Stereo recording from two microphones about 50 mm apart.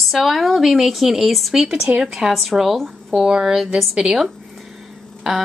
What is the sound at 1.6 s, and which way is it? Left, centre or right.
Speech, centre.